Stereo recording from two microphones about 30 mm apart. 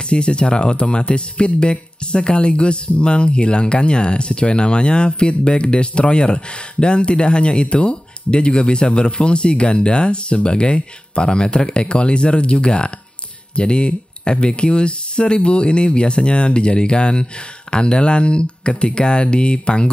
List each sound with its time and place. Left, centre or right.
0.1 s speech: left